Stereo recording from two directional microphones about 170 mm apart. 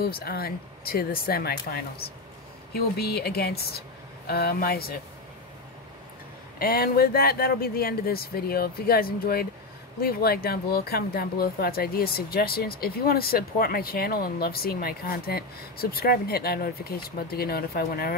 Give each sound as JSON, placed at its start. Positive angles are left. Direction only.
{"t": 0.0, "sound": "a woman's voice", "side_deg": 65}
{"t": 6.6, "sound": "speech", "side_deg": 60}